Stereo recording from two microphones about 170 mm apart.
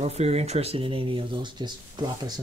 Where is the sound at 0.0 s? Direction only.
40° right (ahead or behind).